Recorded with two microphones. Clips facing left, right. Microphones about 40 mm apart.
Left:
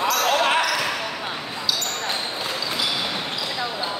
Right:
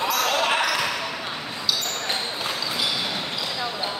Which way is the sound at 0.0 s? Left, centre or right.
Centre.